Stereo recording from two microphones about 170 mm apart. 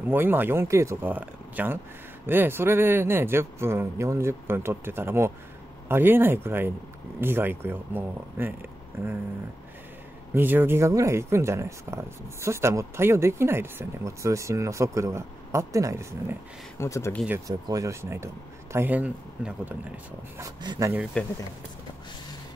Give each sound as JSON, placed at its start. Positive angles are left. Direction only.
{"t": 0.0, "sound": "speech", "side_deg": -10}
{"t": 10.3, "sound": "speech", "side_deg": -10}
{"t": 16.7, "sound": "speech", "side_deg": 15}
{"t": 17.5, "sound": "speech", "side_deg": -20}
{"t": 20.3, "sound": "speech", "side_deg": -25}
{"t": 21.2, "sound": "speech", "side_deg": 5}